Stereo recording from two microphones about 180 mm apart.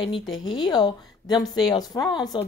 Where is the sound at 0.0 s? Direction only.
30° left (ahead or behind).